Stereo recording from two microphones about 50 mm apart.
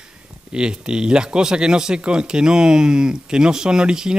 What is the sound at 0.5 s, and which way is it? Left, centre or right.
Speech, centre.